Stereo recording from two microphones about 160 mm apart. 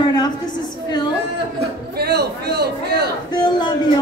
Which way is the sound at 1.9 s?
80° right.